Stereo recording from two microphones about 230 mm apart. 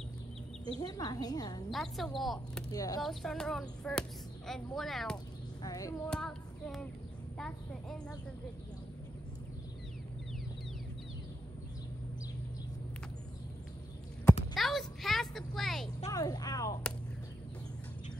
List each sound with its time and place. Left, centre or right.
0.7 s a woman's voice: centre
1.7 s speech: centre
2.7 s a woman's voice: centre
3.0 s speech: centre
5.6 s speech: centre
6.0 s female singing: centre
7.3 s speech: centre
14.5 s a sound: centre
16.1 s a woman's voice: centre